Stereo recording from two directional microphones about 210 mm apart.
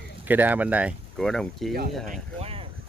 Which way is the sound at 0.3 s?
10° right (ahead or behind).